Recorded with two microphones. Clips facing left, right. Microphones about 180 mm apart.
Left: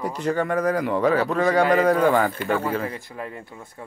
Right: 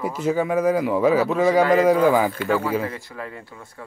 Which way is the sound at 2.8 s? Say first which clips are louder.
Even; 15° left (ahead or behind).